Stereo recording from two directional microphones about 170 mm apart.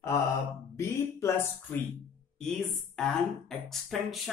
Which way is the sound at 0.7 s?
15° left (ahead or behind).